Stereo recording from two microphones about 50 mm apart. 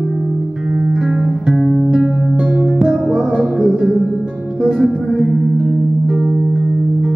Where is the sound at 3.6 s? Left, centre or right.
Centre.